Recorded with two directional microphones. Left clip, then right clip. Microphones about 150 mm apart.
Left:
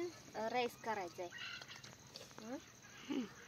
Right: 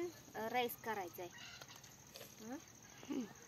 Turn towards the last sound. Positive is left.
turn(degrees=-5)  # may be behind; listen again after turning